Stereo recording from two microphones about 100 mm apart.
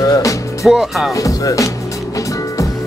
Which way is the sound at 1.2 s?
35° left (ahead or behind).